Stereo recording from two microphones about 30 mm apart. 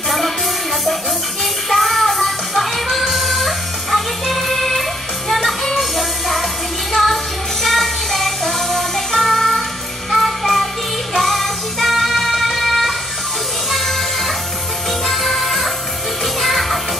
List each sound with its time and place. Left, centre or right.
1.7 s music: centre